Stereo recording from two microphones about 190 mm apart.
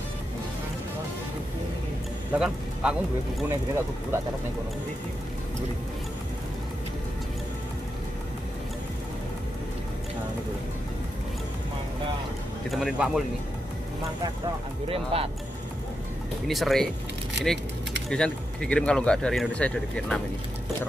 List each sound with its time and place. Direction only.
2.3 s speech: 5° right (ahead or behind)
12.7 s speech: centre (ahead or behind)
15.1 s speech: 30° right (ahead or behind)
16.4 s speech: centre (ahead or behind)
18.1 s speech: 5° left (ahead or behind)